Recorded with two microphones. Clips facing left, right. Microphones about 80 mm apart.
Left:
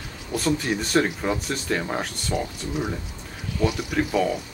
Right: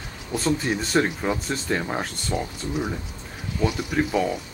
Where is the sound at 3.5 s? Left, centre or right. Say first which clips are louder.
Even; right.